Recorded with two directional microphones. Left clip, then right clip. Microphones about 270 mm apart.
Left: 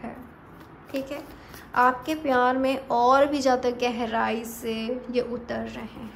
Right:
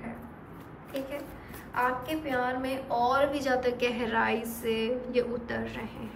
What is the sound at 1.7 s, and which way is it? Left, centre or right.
A woman's voice, centre.